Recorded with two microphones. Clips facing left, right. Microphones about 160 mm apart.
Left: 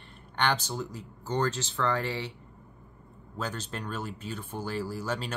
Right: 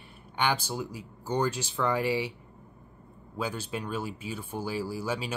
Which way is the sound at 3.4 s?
10° right (ahead or behind).